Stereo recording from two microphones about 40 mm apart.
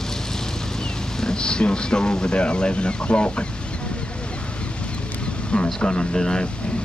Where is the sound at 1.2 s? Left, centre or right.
Centre.